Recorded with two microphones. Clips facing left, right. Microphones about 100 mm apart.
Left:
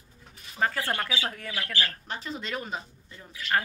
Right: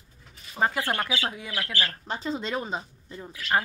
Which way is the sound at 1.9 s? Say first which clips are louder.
Right 5 dB; 30° right (ahead or behind).